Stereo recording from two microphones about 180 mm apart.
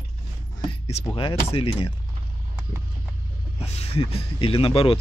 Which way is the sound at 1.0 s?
30° left (ahead or behind).